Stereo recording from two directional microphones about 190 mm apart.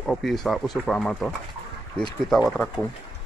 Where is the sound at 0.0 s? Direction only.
Centre (ahead or behind).